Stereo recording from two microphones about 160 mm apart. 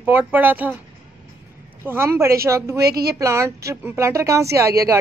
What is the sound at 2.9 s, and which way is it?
Speech, 75° right (ahead or behind).